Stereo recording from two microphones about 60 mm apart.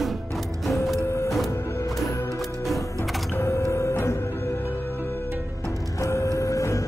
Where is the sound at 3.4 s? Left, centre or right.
Left.